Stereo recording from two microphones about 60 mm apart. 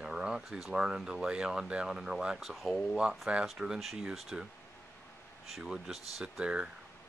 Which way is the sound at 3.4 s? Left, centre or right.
Centre.